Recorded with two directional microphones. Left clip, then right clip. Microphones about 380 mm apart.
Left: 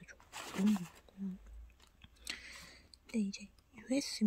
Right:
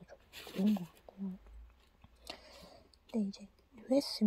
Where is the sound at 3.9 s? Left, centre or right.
Right.